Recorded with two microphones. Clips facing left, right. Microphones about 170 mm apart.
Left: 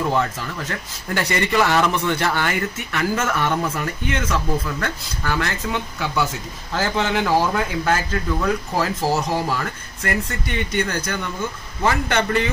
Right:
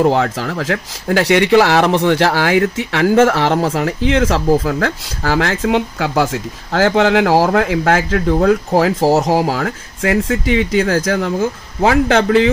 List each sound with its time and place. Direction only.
0.1 s speech: 90° right
3.7 s speech: 90° right
9.1 s speech: 90° right